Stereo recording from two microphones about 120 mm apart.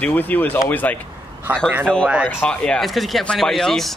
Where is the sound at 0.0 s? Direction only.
15° left (ahead or behind).